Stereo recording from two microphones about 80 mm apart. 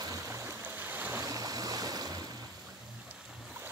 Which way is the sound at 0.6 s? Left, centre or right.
Right.